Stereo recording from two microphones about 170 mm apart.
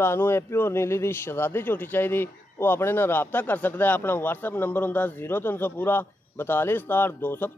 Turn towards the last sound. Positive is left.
turn(degrees=10)  # may be behind; listen again after turning